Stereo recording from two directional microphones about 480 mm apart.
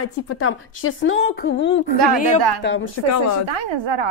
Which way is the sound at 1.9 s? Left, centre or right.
Right.